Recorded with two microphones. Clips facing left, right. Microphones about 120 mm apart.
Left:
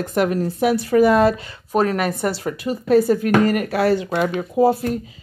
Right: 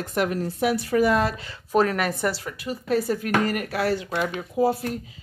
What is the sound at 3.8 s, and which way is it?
Speech, 55° left (ahead or behind).